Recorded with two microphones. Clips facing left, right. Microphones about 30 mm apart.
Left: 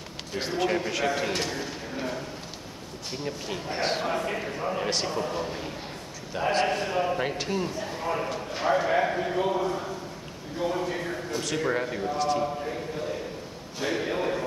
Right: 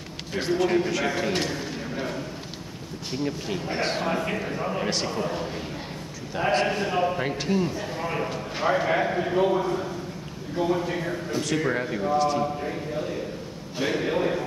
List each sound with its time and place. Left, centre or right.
0.4 s a man's voice: centre
4.6 s speech: centre
8.1 s a man's voice: centre
13.8 s a man's voice: centre